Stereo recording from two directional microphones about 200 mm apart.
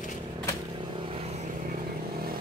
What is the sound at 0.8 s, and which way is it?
Vehicle, 25° right (ahead or behind).